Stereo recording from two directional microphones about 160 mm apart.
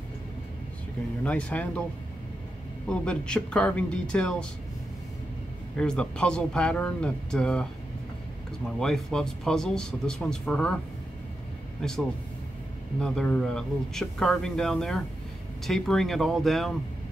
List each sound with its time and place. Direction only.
1.2 s speech: 10° left (ahead or behind)
2.9 s a man's voice: 5° left (ahead or behind)
5.8 s a man's voice: 5° left (ahead or behind)
8.7 s a man's voice: 5° left (ahead or behind)
11.8 s a man's voice: 5° left (ahead or behind)
13.0 s a man's voice: 5° left (ahead or behind)